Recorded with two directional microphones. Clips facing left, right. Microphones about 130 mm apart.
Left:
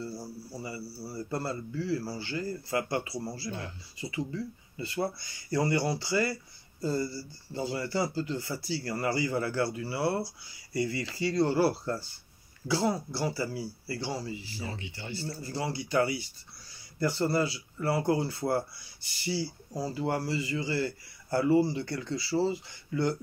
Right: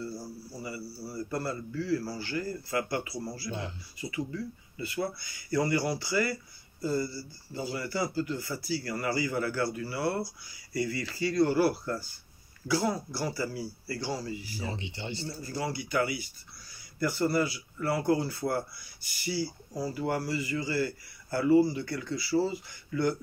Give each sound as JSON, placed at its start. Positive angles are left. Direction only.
{"t": 1.3, "sound": "speech", "side_deg": 25}
{"t": 14.6, "sound": "speech", "side_deg": -20}
{"t": 15.4, "sound": "speech", "side_deg": 30}